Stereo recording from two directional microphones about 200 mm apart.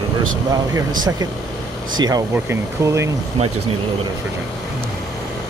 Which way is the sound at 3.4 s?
30° right (ahead or behind).